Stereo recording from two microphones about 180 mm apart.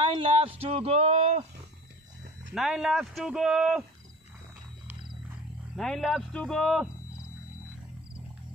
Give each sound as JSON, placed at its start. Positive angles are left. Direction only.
{"t": 0.0, "sound": "speech", "side_deg": -30}
{"t": 2.5, "sound": "speech", "side_deg": 0}
{"t": 5.8, "sound": "speech", "side_deg": 0}